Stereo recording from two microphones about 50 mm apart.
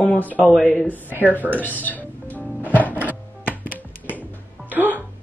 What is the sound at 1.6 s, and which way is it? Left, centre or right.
Speech, left.